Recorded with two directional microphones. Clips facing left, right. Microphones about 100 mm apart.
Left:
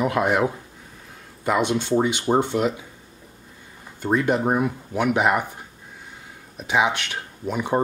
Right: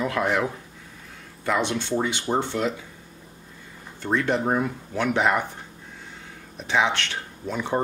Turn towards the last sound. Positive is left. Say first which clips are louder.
# left 3 dB
turn(degrees=15)  # may be behind; listen again after turning